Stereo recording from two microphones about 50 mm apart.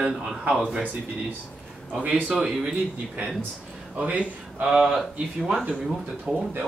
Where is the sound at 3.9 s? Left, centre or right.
Right.